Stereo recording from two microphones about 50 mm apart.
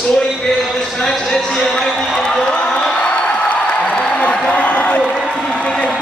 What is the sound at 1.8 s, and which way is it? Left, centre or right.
Music, centre.